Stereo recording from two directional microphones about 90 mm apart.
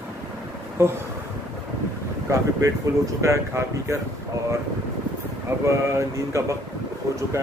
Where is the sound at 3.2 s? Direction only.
35° right (ahead or behind).